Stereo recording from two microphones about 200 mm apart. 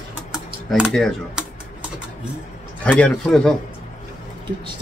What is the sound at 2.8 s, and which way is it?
Speech, 5° left (ahead or behind).